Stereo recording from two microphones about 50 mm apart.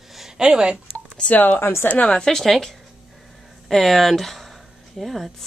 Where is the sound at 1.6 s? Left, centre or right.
Left.